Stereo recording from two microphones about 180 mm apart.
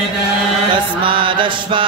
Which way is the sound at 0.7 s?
30° right (ahead or behind).